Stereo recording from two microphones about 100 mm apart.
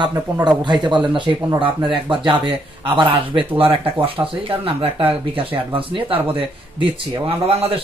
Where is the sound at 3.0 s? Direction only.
60° right (ahead or behind).